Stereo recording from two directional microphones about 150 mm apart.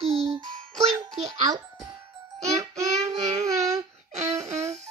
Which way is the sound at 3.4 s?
20° right (ahead or behind).